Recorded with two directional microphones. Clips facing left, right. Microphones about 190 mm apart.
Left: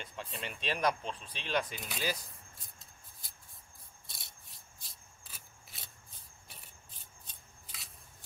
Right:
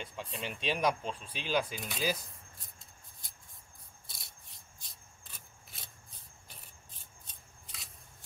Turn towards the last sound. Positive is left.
turn(degrees=0)  # may be behind; listen again after turning